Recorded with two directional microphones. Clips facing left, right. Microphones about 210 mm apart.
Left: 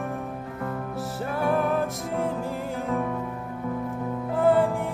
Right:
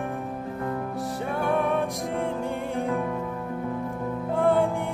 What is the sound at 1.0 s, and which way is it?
Music, centre (ahead or behind).